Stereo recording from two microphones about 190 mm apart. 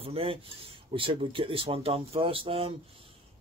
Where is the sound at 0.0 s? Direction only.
30° right (ahead or behind).